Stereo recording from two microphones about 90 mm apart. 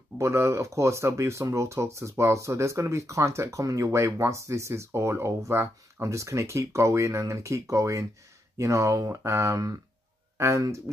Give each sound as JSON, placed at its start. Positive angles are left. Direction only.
{"t": 0.2, "sound": "speech", "side_deg": -30}